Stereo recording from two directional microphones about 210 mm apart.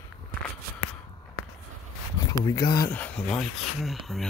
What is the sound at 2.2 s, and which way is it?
Speech, 15° left (ahead or behind).